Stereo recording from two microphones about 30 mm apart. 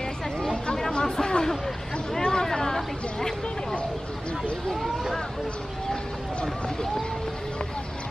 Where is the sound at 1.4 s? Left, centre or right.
Centre.